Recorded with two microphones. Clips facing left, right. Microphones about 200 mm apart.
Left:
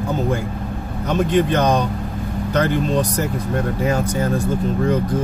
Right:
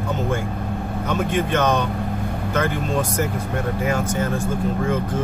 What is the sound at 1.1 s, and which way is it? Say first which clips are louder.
Speech: left 5 dB; 35° left (ahead or behind).